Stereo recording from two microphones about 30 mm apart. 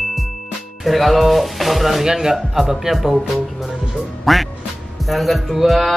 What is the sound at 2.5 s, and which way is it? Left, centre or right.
Speech, centre.